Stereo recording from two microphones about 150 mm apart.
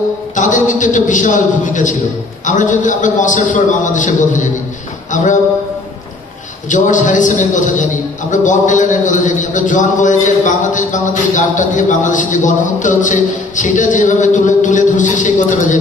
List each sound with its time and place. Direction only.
0.4 s a man's voice: 55° left (ahead or behind)
6.7 s a man's voice: 60° left (ahead or behind)